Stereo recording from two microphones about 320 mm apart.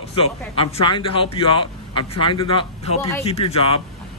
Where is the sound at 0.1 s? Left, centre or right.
Centre.